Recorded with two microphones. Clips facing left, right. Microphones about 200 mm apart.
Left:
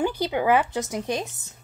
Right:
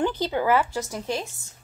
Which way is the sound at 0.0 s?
10° left (ahead or behind).